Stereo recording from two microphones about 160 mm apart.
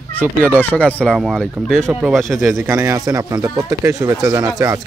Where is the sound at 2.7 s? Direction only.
20° right (ahead or behind).